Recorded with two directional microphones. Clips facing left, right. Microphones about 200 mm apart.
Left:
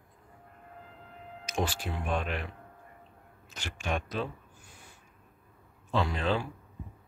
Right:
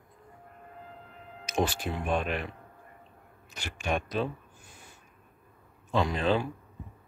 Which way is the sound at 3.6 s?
15° right (ahead or behind).